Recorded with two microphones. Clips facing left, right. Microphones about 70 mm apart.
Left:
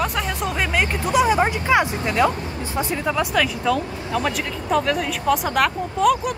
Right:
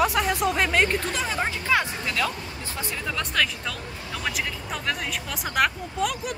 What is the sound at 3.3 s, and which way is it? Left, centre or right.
Speech, centre.